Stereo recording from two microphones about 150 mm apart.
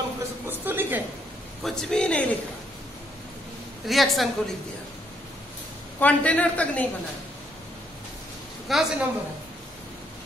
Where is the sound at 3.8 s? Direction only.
Centre (ahead or behind).